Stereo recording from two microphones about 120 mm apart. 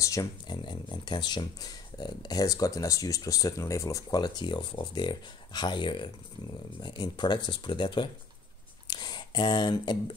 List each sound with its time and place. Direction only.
0.0 s speech: 25° left (ahead or behind)
0.5 s speech: 40° left (ahead or behind)